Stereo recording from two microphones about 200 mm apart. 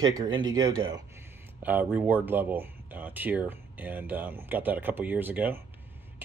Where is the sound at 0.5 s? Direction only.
20° right (ahead or behind).